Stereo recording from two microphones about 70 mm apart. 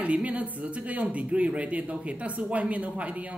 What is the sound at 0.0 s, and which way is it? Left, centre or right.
A woman's voice, centre.